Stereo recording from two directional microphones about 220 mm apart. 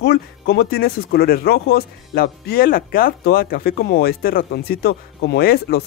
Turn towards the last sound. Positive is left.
turn(degrees=45)  # may be behind; listen again after turning